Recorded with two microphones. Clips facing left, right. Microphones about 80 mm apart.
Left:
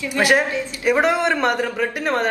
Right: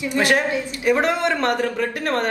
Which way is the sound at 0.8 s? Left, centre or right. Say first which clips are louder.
Left 2 dB; centre.